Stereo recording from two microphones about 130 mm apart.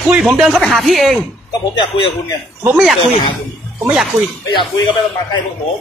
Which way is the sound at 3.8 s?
5° right (ahead or behind).